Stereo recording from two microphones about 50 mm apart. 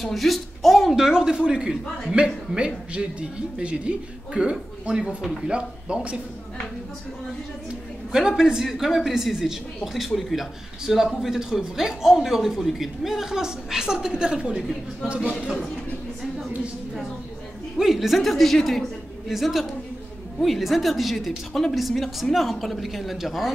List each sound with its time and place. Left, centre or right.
0.0 s a man's voice: centre; by 5.9 s right
8.1 s a man's voice: centre
14.5 s a woman's voice: centre
17.7 s a woman's voice: centre